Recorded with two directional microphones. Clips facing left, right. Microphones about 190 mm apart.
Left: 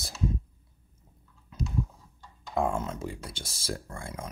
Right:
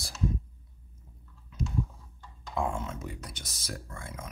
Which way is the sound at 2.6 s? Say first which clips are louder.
Left 4 dB; 40° left (ahead or behind).